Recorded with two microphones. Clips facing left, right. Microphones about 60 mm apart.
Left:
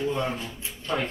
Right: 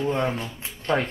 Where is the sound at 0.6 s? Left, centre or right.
Right.